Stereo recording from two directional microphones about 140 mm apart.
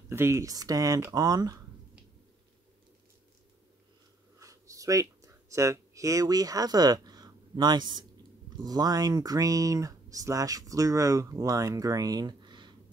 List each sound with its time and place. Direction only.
0.1 s speech: 20° right (ahead or behind)
4.4 s a sound: 25° right (ahead or behind)
8.6 s speech: 25° right (ahead or behind)